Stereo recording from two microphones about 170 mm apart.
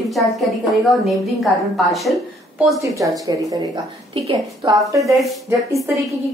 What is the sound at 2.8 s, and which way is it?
A woman's voice, 20° right (ahead or behind).